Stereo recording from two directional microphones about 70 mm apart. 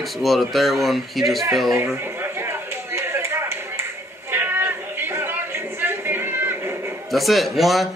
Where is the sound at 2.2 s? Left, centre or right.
Right.